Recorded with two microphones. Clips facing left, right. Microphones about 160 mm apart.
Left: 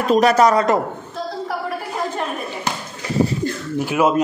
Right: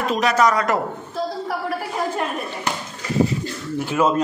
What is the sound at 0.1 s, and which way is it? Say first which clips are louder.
Speech: left 6 dB; 40° left (ahead or behind).